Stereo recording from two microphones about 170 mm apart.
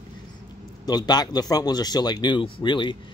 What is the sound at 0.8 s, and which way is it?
Speech, 25° left (ahead or behind).